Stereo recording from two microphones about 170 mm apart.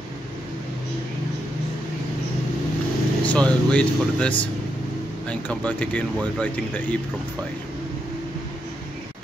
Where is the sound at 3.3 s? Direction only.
5° left (ahead or behind).